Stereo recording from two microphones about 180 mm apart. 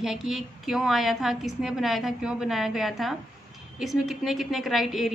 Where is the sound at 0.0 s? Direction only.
Centre (ahead or behind).